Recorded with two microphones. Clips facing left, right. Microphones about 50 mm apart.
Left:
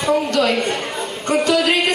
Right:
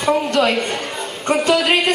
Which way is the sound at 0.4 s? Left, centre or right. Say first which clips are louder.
Even; centre.